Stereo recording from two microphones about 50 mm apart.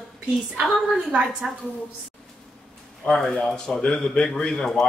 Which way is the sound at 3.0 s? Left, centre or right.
Centre.